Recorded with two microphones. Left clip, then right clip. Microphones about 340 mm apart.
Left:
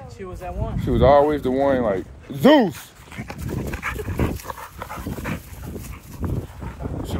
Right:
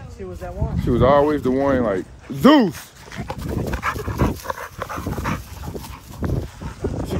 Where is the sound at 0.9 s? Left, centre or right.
Centre.